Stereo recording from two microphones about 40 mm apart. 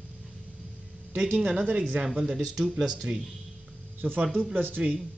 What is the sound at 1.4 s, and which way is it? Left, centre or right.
Speech, right.